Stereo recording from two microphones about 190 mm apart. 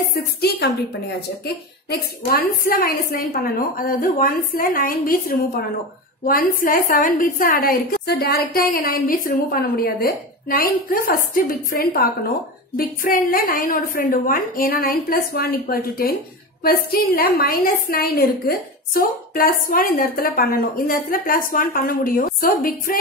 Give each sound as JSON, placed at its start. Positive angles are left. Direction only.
{"t": 0.1, "sound": "a woman's voice", "side_deg": 55}